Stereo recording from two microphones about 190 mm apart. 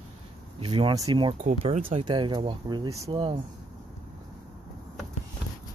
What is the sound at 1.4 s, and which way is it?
Speech, 35° right (ahead or behind).